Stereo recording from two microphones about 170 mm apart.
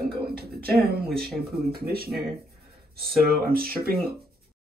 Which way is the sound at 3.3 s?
60° right (ahead or behind).